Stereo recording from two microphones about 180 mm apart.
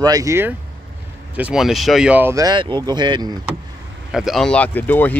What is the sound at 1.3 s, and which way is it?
Speech, 5° right (ahead or behind).